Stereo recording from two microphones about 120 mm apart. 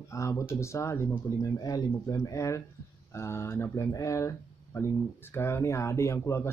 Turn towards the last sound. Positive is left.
turn(degrees=25)  # may be behind; listen again after turning